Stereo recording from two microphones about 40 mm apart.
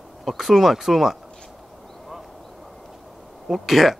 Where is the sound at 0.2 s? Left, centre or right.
Centre.